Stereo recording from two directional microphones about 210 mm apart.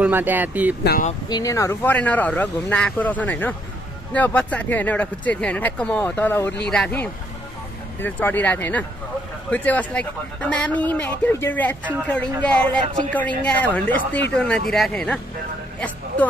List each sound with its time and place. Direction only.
0.0 s speech: 10° right (ahead or behind)
0.8 s speech: 40° left (ahead or behind)
1.3 s a man's voice: 15° left (ahead or behind)